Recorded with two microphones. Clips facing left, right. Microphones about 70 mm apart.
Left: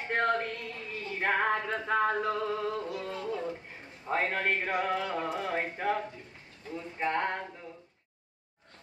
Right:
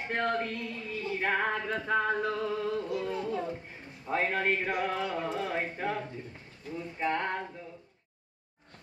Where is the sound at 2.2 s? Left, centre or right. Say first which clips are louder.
Even; left.